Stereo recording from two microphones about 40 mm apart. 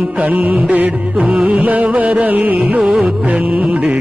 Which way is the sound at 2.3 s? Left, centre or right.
Right.